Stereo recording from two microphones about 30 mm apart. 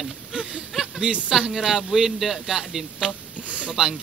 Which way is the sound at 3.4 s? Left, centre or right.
Right.